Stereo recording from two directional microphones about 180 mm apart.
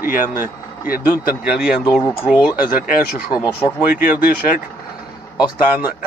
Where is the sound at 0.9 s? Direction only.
55° left (ahead or behind).